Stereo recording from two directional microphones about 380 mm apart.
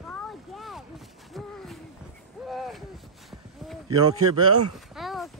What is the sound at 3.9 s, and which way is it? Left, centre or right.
Speech, right.